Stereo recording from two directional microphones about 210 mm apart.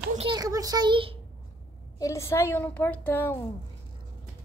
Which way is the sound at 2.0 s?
15° left (ahead or behind).